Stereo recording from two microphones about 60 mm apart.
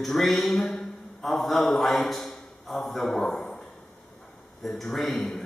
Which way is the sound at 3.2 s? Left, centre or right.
Centre.